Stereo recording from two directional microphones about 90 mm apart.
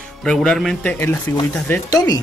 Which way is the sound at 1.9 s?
45° left (ahead or behind).